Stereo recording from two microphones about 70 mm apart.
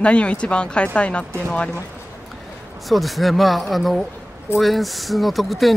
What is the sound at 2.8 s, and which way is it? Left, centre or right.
Speech, centre.